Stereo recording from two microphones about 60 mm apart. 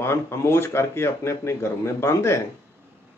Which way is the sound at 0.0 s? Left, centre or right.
Left.